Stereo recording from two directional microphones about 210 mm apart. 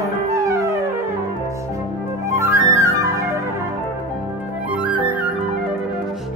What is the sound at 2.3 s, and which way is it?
Flute, 15° right (ahead or behind).